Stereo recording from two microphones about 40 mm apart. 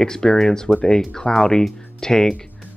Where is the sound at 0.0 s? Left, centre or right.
Centre.